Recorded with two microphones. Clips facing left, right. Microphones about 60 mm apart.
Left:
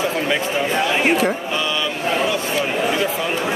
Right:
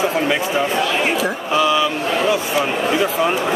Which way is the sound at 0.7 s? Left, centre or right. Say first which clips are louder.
Even; centre.